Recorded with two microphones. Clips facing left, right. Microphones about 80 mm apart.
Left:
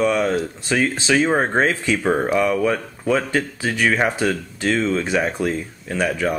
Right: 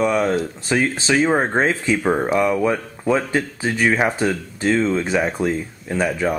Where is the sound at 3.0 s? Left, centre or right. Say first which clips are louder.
Right 2 dB; centre.